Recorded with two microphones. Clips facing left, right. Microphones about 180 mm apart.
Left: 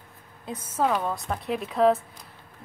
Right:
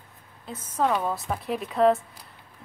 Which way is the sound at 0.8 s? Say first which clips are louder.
Even; centre (ahead or behind).